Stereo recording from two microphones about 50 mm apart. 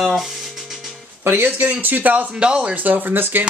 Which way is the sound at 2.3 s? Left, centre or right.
Centre.